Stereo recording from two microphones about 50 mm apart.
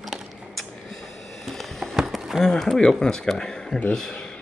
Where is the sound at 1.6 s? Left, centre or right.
Centre.